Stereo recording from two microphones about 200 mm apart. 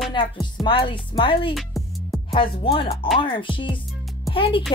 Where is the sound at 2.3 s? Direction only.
25° left (ahead or behind).